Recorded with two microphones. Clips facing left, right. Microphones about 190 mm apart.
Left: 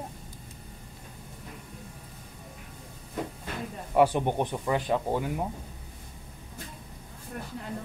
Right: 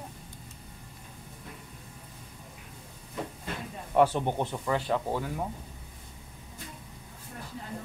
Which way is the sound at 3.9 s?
15° left (ahead or behind).